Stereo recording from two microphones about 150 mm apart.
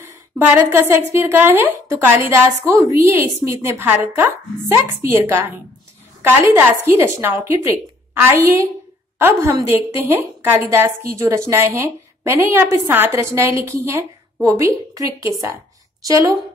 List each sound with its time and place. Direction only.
0.1 s a woman's voice: 15° right (ahead or behind)